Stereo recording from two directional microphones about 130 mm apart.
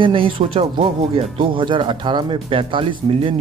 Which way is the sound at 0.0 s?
40° right (ahead or behind).